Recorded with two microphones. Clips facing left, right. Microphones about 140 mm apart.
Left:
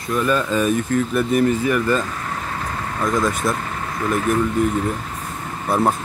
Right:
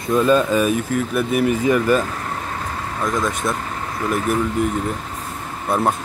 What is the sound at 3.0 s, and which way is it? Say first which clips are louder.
Speech: left 2 dB; centre (ahead or behind).